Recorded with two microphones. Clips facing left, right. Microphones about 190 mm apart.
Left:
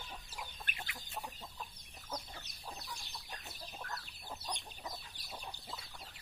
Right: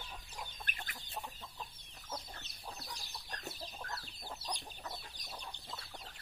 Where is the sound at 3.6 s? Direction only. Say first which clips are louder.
Right 1 dB; 30° right (ahead or behind).